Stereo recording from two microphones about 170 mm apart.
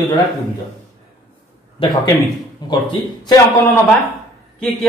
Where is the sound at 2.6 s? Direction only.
25° left (ahead or behind).